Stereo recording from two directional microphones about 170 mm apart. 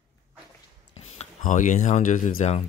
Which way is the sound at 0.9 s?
45° left (ahead or behind).